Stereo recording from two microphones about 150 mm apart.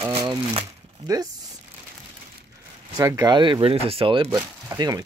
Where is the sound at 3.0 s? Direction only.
20° right (ahead or behind).